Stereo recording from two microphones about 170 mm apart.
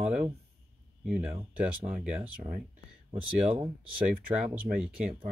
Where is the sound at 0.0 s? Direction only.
5° right (ahead or behind).